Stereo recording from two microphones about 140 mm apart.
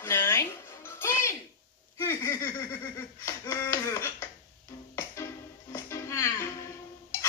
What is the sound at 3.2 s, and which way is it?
Finger snapping, 25° left (ahead or behind).